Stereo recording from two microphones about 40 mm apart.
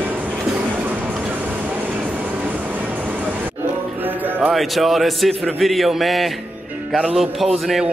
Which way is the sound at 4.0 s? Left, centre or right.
Right.